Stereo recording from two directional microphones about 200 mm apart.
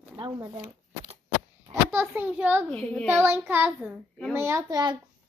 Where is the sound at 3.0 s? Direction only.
10° right (ahead or behind).